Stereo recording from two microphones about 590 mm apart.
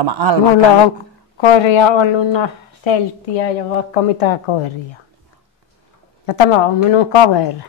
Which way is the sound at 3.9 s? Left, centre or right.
Left.